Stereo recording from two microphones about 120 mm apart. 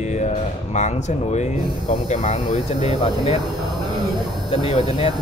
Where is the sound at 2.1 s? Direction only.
90° left.